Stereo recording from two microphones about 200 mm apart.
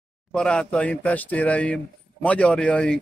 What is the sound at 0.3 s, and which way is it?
Speech, 5° left (ahead or behind).